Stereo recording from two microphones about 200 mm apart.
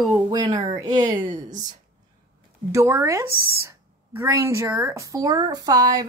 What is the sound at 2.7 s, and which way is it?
Speech, 15° right (ahead or behind).